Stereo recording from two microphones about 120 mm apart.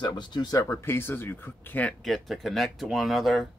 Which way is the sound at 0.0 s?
40° left (ahead or behind).